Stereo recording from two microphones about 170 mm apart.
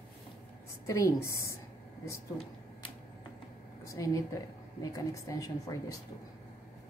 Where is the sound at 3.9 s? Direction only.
20° left (ahead or behind).